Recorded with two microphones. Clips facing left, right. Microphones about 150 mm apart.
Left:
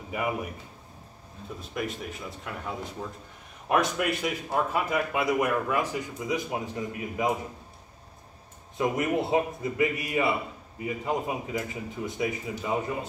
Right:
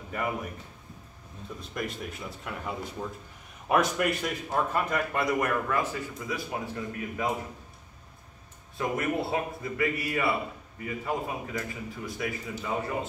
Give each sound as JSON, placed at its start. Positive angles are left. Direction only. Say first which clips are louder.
{"t": 0.1, "sound": "a man's voice", "louder": "left 2 dB", "side_deg": 10}
{"t": 1.7, "sound": "a man's voice", "louder": "left 2 dB", "side_deg": 0}
{"t": 8.7, "sound": "a man's voice", "louder": "left 3 dB", "side_deg": 20}